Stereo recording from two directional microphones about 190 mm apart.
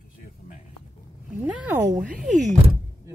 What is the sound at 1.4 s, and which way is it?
Speech, 10° right (ahead or behind).